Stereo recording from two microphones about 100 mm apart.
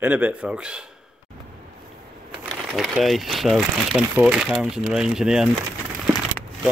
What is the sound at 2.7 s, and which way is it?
Speech, centre (ahead or behind).